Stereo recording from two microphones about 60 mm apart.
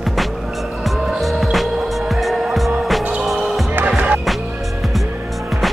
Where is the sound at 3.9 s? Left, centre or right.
Right.